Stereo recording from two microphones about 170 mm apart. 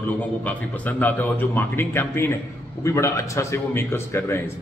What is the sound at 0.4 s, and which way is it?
A man's voice, 10° left (ahead or behind).